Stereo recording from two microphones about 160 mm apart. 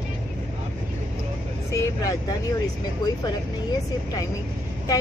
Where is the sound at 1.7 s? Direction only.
20° left (ahead or behind).